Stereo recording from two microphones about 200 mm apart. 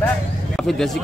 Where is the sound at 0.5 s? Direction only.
Centre (ahead or behind).